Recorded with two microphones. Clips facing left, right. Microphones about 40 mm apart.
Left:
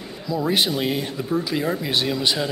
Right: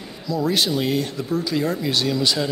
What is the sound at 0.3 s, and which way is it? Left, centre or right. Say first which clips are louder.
Speech: even; centre.